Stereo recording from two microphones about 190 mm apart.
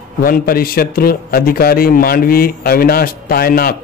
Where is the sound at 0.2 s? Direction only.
50° left (ahead or behind).